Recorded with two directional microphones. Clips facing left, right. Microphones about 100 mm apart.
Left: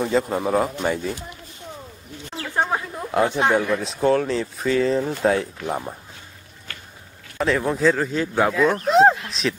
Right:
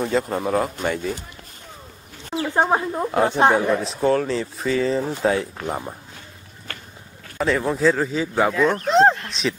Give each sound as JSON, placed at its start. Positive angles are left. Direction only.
{"t": 0.0, "sound": "speech", "side_deg": 0}
{"t": 2.3, "sound": "bird", "side_deg": -15}
{"t": 2.7, "sound": "speech", "side_deg": -30}
{"t": 3.1, "sound": "speech", "side_deg": 0}
{"t": 7.3, "sound": "speech", "side_deg": 0}
{"t": 8.8, "sound": "a sound", "side_deg": 5}